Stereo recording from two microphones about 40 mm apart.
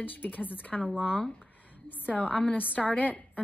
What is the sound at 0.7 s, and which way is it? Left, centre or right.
Speech, centre.